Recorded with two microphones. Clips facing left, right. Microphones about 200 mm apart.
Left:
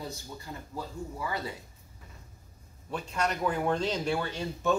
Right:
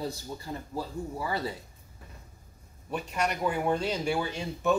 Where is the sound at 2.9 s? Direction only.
15° right (ahead or behind).